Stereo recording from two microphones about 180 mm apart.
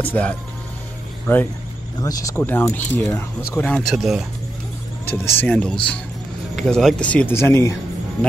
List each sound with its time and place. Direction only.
0.0 s speech: 10° left (ahead or behind)
5.1 s speech: 10° left (ahead or behind)